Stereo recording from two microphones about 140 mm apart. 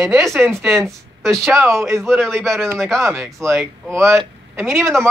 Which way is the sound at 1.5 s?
20° right (ahead or behind).